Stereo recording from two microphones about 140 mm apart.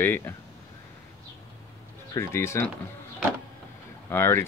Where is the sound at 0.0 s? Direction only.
15° left (ahead or behind).